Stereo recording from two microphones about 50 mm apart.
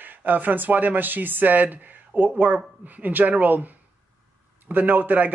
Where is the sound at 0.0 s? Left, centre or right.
Right.